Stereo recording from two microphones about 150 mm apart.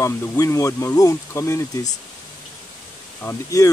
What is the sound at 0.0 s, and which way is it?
Speech, 20° left (ahead or behind).